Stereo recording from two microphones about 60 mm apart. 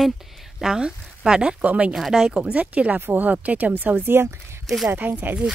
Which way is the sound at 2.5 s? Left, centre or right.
Right.